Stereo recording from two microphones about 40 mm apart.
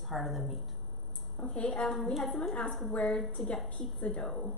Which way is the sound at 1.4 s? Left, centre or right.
Left.